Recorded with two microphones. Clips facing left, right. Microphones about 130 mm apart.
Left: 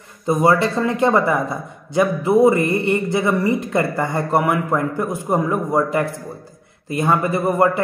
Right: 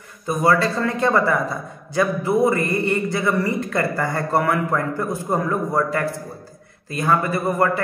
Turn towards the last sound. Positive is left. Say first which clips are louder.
# left 3 dB
turn(degrees=20)  # may be behind; listen again after turning